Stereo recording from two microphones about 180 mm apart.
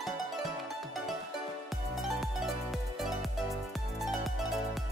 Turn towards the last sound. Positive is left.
turn(degrees=0)  # may be behind; listen again after turning